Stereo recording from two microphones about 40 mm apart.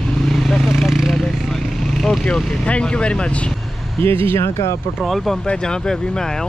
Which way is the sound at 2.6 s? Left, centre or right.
Left.